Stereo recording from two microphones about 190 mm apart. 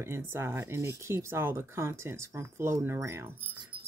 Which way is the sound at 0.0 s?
15° right (ahead or behind).